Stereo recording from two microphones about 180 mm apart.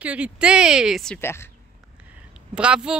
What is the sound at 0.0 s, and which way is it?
Speech, 5° right (ahead or behind).